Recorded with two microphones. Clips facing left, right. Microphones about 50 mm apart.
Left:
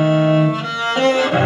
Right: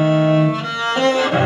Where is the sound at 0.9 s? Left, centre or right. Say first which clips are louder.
Left 1 dB; left.